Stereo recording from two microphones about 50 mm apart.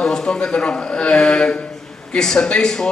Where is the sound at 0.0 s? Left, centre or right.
Centre.